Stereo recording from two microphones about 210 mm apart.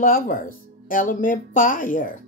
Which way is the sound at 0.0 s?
40° left (ahead or behind).